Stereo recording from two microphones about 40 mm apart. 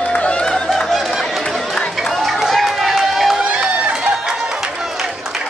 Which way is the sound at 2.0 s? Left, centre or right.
Centre.